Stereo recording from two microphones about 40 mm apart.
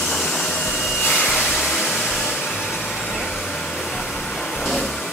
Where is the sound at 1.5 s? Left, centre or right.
Centre.